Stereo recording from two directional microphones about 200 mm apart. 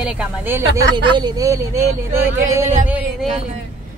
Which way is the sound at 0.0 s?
10° right (ahead or behind).